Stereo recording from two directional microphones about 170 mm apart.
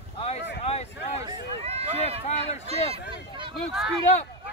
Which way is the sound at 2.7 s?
30° right (ahead or behind).